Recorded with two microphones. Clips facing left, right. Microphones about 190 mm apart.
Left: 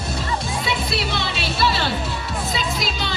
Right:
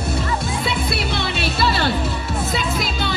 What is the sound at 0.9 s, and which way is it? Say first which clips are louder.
Music: right 1 dB; 55° right (ahead or behind).